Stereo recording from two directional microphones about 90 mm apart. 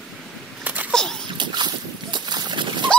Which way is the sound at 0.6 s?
20° right (ahead or behind).